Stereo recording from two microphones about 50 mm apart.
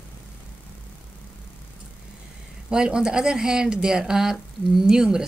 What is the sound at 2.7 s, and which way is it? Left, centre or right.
Speech, centre.